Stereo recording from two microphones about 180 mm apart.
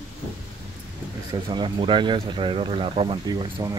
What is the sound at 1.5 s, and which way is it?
Speech, 25° right (ahead or behind).